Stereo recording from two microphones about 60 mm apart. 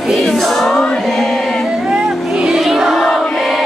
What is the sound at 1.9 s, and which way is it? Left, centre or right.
Music, centre.